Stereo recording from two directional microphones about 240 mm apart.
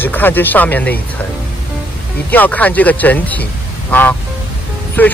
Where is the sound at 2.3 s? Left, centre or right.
Centre.